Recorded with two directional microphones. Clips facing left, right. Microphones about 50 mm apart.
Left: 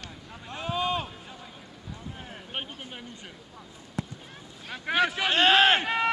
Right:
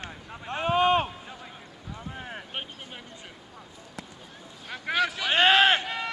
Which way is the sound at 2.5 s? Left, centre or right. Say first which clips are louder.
Left 1 dB; centre.